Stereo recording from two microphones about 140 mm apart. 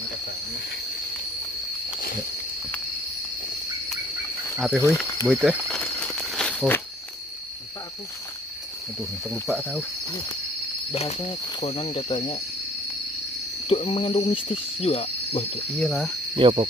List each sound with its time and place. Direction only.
4.6 s cricket: 5° right (ahead or behind)
5.8 s a sound: 5° left (ahead or behind)
9.3 s cricket: 5° left (ahead or behind)
10.9 s speech: 40° left (ahead or behind)
13.7 s speech: 40° left (ahead or behind)
15.8 s speech: 5° left (ahead or behind)
16.3 s speech: 40° right (ahead or behind)